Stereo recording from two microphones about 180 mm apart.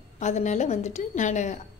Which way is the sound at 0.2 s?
40° left (ahead or behind).